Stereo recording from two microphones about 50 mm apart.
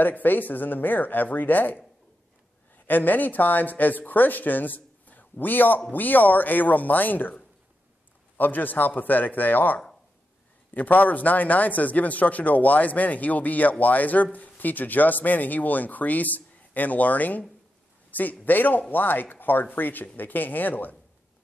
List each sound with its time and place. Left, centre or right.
0.0 s speech: left
2.9 s speech: left
8.4 s speech: left